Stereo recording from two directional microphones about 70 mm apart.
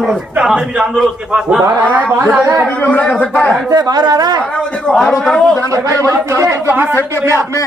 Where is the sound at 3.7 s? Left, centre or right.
Right.